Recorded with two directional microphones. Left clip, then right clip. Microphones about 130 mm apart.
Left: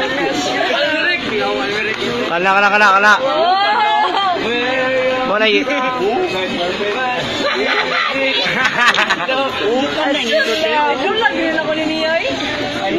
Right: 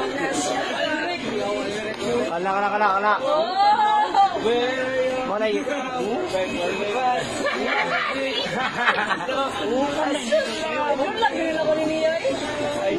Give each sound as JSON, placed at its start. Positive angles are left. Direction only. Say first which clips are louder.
{"t": 2.4, "sound": "speech", "louder": "left 12 dB", "side_deg": 15}